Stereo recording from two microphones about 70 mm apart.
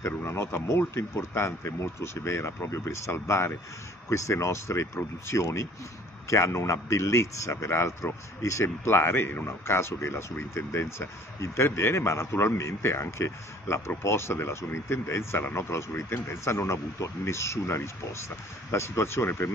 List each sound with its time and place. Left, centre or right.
0.2 s speech: left
8.6 s speech: left